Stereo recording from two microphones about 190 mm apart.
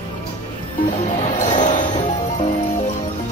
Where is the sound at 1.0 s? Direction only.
40° left (ahead or behind).